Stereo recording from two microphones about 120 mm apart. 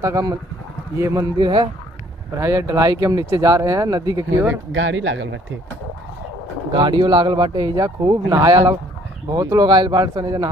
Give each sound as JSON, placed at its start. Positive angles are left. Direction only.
{"t": 0.0, "sound": "speech", "side_deg": -30}
{"t": 1.4, "sound": "speech", "side_deg": -35}
{"t": 2.3, "sound": "speech", "side_deg": -25}
{"t": 6.7, "sound": "speech", "side_deg": -40}